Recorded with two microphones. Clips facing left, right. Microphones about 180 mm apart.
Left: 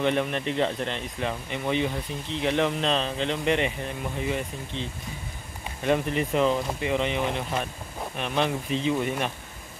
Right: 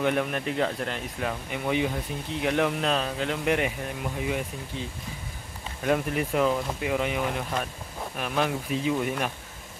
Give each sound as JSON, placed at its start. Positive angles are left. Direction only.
{"t": 0.0, "sound": "speech", "side_deg": -5}
{"t": 5.9, "sound": "speech", "side_deg": -5}